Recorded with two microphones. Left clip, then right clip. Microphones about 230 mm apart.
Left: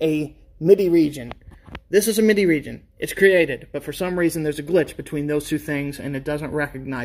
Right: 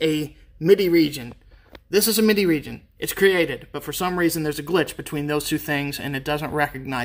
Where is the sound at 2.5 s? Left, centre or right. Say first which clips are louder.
Left 2 dB; centre.